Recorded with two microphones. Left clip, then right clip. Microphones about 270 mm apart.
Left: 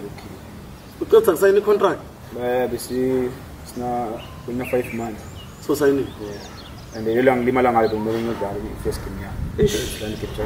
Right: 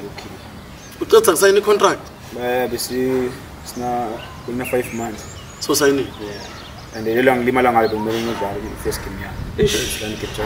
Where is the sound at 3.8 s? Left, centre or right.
Centre.